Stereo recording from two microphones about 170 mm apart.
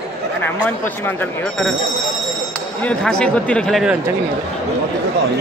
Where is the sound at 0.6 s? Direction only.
10° left (ahead or behind).